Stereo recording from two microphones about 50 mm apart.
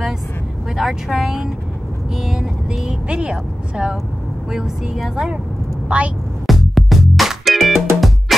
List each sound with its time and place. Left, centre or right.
0.7 s speech: centre
5.9 s speech: right
6.4 s music: centre